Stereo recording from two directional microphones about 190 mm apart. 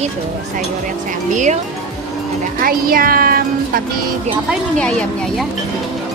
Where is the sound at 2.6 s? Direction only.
50° right (ahead or behind).